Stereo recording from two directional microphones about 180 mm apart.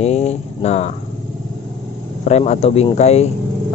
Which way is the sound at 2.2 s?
40° left (ahead or behind).